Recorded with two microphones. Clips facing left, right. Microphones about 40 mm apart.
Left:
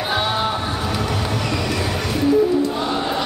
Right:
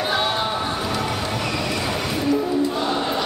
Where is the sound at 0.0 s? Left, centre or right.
Centre.